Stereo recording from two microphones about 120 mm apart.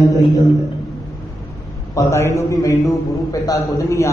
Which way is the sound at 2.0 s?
25° left (ahead or behind).